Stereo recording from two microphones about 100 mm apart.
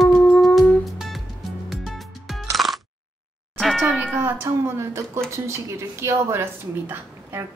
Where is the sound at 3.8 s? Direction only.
15° right (ahead or behind).